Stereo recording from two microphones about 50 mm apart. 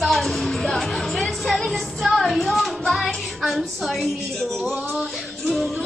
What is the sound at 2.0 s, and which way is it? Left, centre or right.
Music, centre.